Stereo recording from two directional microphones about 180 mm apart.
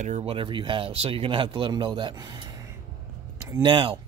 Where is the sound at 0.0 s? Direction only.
35° right (ahead or behind); by 3.7 s 15° right (ahead or behind).